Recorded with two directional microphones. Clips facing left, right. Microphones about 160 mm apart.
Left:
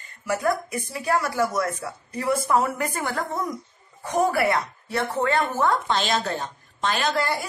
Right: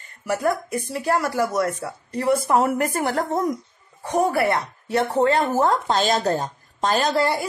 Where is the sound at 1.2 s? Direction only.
35° right (ahead or behind).